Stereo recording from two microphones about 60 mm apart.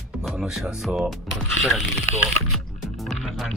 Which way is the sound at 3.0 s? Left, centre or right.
Centre.